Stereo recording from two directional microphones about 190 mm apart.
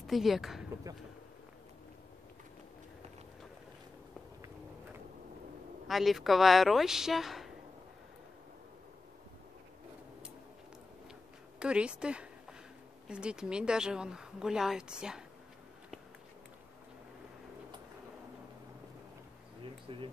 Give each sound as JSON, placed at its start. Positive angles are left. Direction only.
{"t": 0.0, "sound": "a woman's voice", "side_deg": 0}
{"t": 5.9, "sound": "a woman's voice", "side_deg": 0}
{"t": 11.6, "sound": "a woman's voice", "side_deg": -5}
{"t": 19.9, "sound": "speech", "side_deg": -25}